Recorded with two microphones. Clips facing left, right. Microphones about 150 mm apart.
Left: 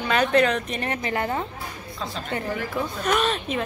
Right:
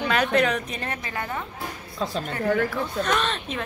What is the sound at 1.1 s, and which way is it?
Speech, 30° left (ahead or behind).